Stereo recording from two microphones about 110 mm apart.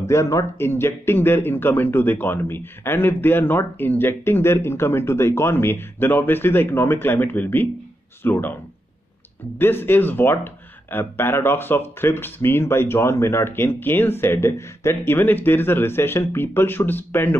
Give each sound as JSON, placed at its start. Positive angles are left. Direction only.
{"t": 0.0, "sound": "speech", "side_deg": 25}
{"t": 9.6, "sound": "speech", "side_deg": 20}